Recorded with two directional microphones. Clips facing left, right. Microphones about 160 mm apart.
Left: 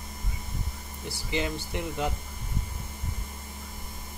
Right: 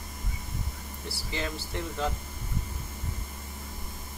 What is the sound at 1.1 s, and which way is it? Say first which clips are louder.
Speech: left 4 dB; 20° left (ahead or behind).